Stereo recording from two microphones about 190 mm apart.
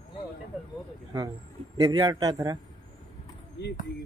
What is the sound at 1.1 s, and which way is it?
A man's voice, 20° right (ahead or behind).